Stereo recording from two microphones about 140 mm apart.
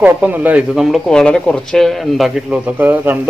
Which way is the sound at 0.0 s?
10° right (ahead or behind).